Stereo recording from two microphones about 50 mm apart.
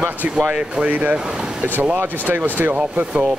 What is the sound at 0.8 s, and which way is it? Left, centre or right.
Speech, right.